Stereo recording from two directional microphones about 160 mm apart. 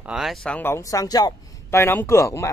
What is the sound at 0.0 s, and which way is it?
Speech, 5° right (ahead or behind).